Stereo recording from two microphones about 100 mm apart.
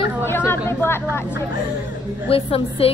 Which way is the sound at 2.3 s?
75° left (ahead or behind).